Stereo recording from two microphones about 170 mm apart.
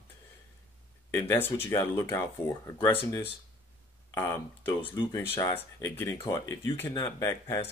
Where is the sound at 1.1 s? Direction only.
15° left (ahead or behind).